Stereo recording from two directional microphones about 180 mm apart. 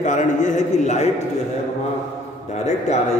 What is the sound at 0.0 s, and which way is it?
Speech, 45° left (ahead or behind).